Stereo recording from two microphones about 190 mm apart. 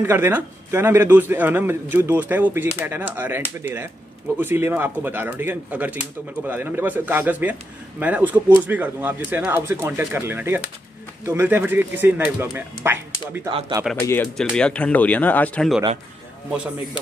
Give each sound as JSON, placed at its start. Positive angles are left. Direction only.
{"t": 0.0, "sound": "speech", "side_deg": -10}
{"t": 13.5, "sound": "speech", "side_deg": -25}
{"t": 14.0, "sound": "speech", "side_deg": 10}